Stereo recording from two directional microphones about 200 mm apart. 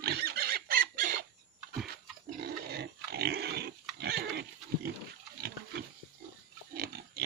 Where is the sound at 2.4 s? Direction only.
55° right (ahead or behind).